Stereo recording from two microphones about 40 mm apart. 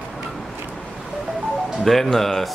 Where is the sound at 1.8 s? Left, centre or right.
Centre.